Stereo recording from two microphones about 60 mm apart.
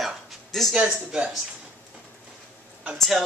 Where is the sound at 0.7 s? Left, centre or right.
Centre.